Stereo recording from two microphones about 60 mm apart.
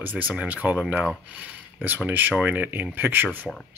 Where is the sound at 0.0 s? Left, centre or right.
Right.